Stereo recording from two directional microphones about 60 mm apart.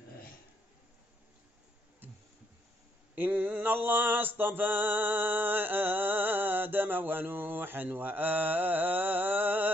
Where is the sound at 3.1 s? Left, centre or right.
Right.